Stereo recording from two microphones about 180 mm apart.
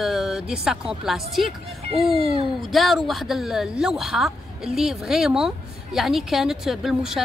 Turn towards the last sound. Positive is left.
turn(degrees=0)  # may be behind; listen again after turning